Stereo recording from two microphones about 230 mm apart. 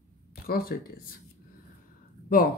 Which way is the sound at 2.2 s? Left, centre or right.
Left.